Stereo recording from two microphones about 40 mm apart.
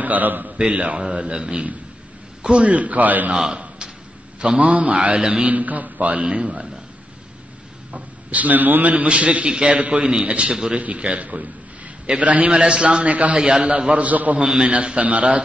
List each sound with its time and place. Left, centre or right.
0.0 s a man's voice: right
0.7 s a man's voice: right
1.0 s a man's voice: right
2.6 s a man's voice: right
4.4 s a man's voice: right
5.5 s a man's voice: right
6.1 s a man's voice: right
7.9 s a man's voice: right
8.9 s a man's voice: right
13.4 s a man's voice: right
14.0 s a man's voice: right
14.4 s a man's voice: centre
14.7 s a man's voice: right